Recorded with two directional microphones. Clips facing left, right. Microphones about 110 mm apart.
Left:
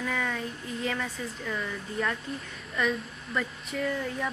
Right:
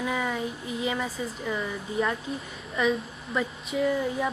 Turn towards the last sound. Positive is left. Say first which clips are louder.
# right 5 dB
turn(degrees=-10)  # may be behind; listen again after turning